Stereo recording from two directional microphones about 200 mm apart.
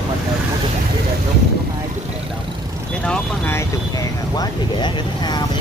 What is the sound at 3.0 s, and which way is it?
Speech, 10° left (ahead or behind).